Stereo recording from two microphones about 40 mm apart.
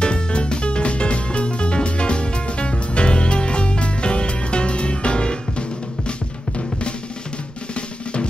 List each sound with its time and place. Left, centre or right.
0.0 s music: left
7.7 s drum: left